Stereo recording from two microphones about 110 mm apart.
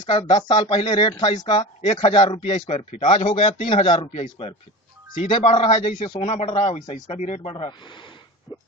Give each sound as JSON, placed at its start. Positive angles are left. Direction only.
{"t": 0.2, "sound": "speech", "side_deg": 90}
{"t": 0.5, "sound": "speech", "side_deg": 50}
{"t": 1.8, "sound": "speech", "side_deg": 90}
{"t": 2.0, "sound": "speech", "side_deg": 55}
{"t": 5.4, "sound": "a man's voice", "side_deg": 70}
{"t": 6.3, "sound": "speech", "side_deg": 70}
{"t": 7.3, "sound": "speech", "side_deg": 50}
{"t": 8.5, "sound": "a sound", "side_deg": 45}